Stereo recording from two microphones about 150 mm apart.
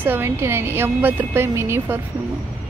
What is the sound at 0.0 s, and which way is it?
Speech, 15° right (ahead or behind).